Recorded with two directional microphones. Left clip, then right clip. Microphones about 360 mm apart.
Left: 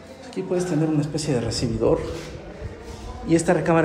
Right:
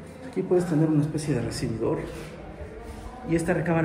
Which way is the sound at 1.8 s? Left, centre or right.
Centre.